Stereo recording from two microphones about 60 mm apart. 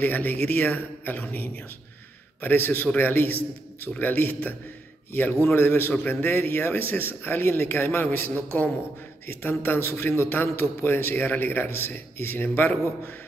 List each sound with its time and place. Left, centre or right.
0.0 s a man's voice: left